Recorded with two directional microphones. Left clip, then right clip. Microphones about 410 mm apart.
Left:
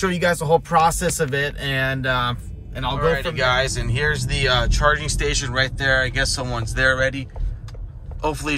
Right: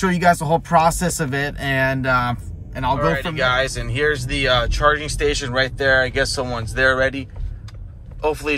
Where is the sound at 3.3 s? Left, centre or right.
Centre.